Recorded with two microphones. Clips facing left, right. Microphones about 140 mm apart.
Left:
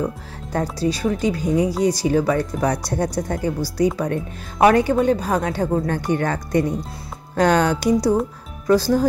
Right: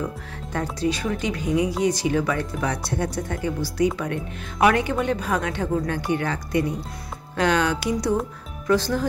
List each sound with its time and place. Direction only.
0.0 s music: 35° left (ahead or behind)
1.2 s a woman's voice: 35° left (ahead or behind)